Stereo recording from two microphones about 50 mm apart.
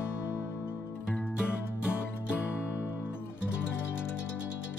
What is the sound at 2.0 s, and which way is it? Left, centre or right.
Music, left.